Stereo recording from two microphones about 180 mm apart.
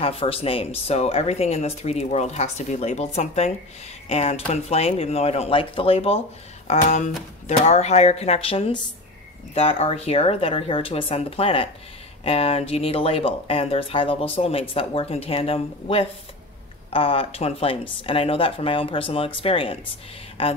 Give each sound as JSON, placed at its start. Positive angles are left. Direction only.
{"t": 0.0, "sound": "speech", "side_deg": 30}